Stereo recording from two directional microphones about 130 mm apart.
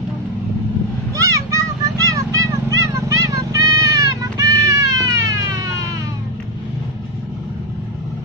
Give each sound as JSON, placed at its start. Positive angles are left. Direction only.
{"t": 1.1, "sound": "vehicle", "side_deg": -25}